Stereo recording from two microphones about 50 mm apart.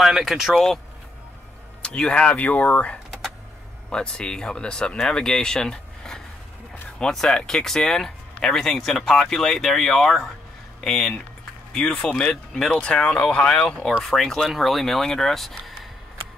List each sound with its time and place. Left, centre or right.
0.0 s speech: centre
1.8 s speech: centre
3.9 s speech: centre
13.9 s speech: centre